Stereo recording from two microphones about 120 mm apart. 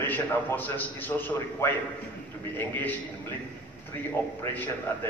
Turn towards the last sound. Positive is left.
turn(degrees=20)  # may be behind; listen again after turning